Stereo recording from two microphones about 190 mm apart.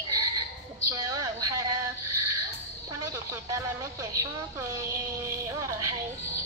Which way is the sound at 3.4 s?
15° right (ahead or behind).